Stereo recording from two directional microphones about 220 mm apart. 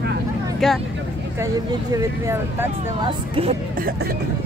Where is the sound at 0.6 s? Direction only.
Centre (ahead or behind).